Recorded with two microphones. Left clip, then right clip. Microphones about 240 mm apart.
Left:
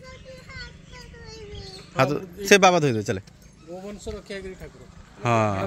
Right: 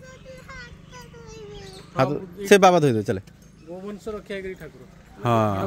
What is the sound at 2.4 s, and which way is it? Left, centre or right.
Speech, centre.